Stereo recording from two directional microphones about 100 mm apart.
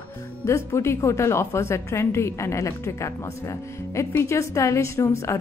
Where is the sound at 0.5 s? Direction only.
30° left (ahead or behind).